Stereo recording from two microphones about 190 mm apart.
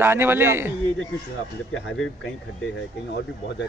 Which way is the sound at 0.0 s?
10° right (ahead or behind).